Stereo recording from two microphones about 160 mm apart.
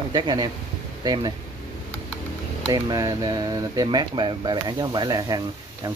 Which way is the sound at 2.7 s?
20° right (ahead or behind).